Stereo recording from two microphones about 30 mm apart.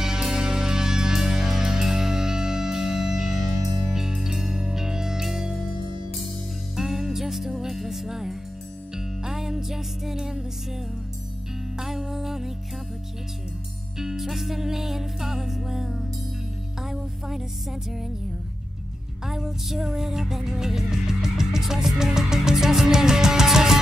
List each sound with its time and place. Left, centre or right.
0.0 s music: right
6.8 s music: centre
11.7 s music: centre
13.9 s music: centre
14.2 s music: centre
19.2 s music: centre